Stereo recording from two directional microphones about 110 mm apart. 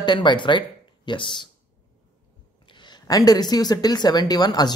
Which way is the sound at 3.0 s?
35° left (ahead or behind).